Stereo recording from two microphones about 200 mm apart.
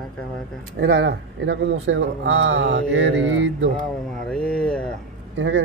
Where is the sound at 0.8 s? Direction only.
55° right (ahead or behind).